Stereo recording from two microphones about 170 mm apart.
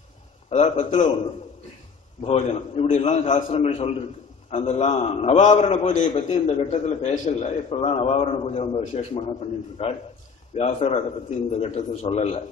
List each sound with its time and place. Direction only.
0.5 s a man's voice: 45° left (ahead or behind)
2.2 s a man's voice: 35° left (ahead or behind)